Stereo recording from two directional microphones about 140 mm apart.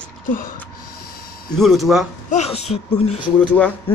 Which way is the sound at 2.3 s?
50° left (ahead or behind).